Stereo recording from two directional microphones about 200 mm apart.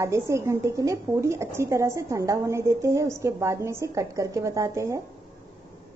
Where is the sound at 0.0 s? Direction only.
15° right (ahead or behind).